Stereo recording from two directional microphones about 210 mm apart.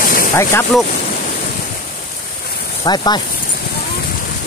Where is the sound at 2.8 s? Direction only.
20° left (ahead or behind).